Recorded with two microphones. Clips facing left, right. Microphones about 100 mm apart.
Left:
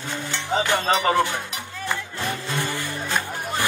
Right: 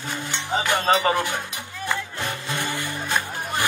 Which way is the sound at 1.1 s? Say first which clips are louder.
Left 3 dB; 15° right (ahead or behind).